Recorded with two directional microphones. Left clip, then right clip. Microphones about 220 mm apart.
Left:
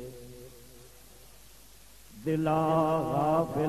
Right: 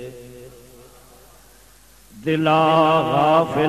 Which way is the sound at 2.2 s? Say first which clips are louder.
Right 11 dB; 30° right (ahead or behind).